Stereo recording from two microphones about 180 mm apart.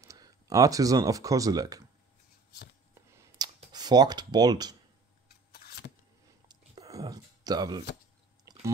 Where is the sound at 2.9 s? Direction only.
15° right (ahead or behind).